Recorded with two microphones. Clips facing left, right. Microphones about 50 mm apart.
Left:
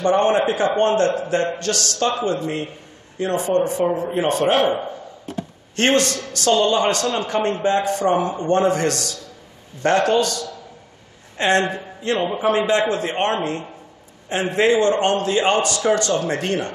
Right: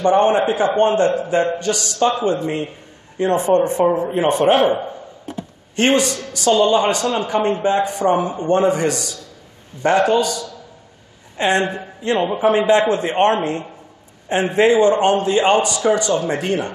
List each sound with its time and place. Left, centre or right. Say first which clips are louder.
0.2 s speech: right 2 dB; centre; by 3.8 s right
4.3 s a man's voice: right 3 dB; right
12.2 s a man's voice: right 3 dB; centre